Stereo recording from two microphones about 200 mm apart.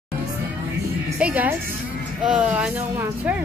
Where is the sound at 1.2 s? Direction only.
10° right (ahead or behind).